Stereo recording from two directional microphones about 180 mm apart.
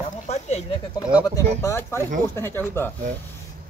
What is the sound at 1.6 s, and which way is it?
Speech, 15° left (ahead or behind).